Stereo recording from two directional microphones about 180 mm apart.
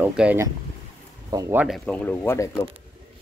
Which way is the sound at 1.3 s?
20° right (ahead or behind).